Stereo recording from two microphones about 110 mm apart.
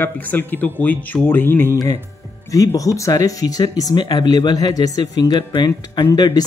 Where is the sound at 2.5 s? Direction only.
30° left (ahead or behind).